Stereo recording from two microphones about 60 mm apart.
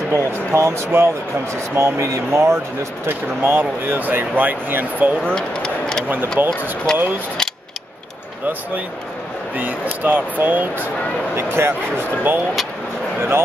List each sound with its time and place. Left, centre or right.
0.1 s speech: right
3.1 s speech: right
5.2 s a sound: centre
6.4 s speech: right
6.9 s speech: centre
9.6 s speech: right
11.3 s speech: right